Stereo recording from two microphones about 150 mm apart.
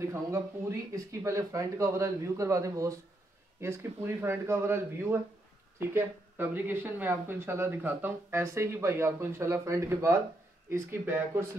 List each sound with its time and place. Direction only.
0.0 s speech: 20° right (ahead or behind)